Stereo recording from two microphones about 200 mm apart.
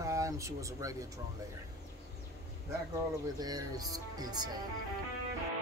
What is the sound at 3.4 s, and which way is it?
Speech, 20° right (ahead or behind).